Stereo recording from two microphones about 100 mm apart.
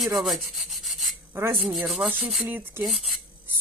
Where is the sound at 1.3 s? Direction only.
25° right (ahead or behind).